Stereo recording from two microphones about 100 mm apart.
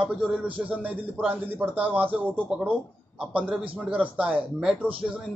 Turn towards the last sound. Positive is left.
turn(degrees=-15)  # may be behind; listen again after turning